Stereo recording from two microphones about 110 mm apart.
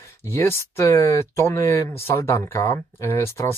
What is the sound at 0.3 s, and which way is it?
Speech, 25° left (ahead or behind).